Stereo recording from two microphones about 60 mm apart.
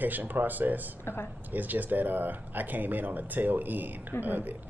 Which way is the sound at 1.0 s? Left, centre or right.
Left.